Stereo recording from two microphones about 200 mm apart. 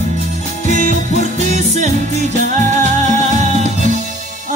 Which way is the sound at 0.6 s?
40° right (ahead or behind).